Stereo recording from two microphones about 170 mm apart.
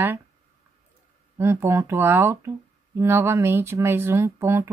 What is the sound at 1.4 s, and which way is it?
Speech, 15° right (ahead or behind).